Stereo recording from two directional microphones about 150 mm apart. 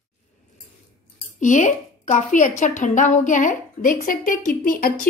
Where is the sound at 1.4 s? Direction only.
55° left (ahead or behind).